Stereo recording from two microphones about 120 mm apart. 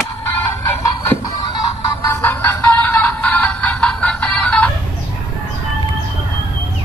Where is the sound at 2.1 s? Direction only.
20° left (ahead or behind).